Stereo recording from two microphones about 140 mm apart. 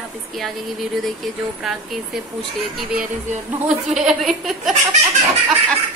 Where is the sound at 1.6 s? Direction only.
Centre (ahead or behind).